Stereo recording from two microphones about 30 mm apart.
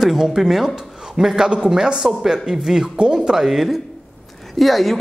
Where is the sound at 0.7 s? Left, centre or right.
Right.